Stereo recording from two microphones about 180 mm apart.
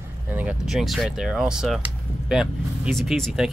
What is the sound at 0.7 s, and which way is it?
Speech, centre (ahead or behind).